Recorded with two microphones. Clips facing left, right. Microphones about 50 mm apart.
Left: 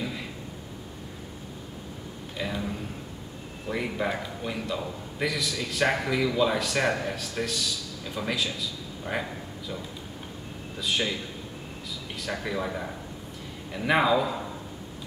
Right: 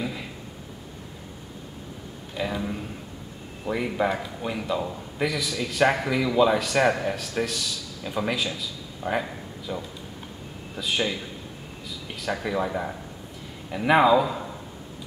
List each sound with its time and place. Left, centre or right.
2.3 s a man's voice: centre
10.8 s a man's voice: centre
12.2 s a man's voice: centre